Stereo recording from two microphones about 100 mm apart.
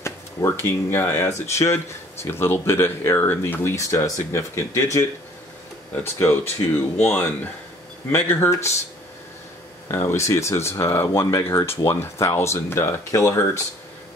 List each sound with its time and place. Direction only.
0.0 s speech: 25° left (ahead or behind)
6.1 s speech: 20° left (ahead or behind)
9.8 s speech: 25° left (ahead or behind)